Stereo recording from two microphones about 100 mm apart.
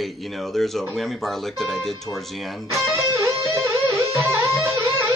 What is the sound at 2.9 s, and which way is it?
Music, 30° right (ahead or behind).